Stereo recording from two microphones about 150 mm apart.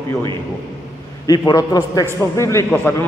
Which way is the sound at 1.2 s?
25° left (ahead or behind).